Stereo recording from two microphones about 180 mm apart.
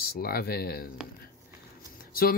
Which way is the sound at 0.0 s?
55° left (ahead or behind).